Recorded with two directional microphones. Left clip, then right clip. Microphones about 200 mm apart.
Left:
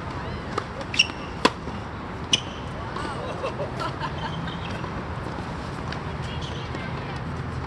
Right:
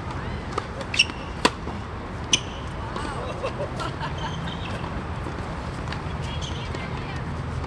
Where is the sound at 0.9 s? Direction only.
25° right (ahead or behind).